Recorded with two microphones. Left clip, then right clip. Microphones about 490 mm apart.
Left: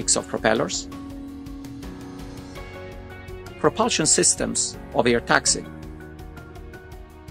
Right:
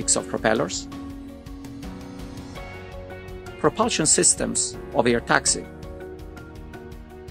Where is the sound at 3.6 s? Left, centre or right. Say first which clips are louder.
Left 1 dB; centre.